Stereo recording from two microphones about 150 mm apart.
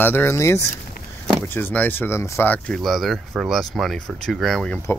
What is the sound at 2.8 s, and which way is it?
Speech, centre (ahead or behind).